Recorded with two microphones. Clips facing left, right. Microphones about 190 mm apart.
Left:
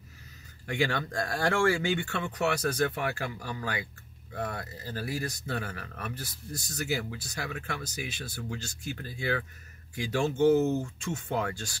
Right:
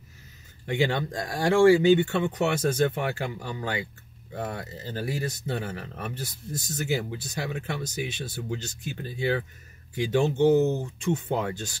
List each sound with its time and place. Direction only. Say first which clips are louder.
0.7 s speech: right 4 dB; 20° right (ahead or behind)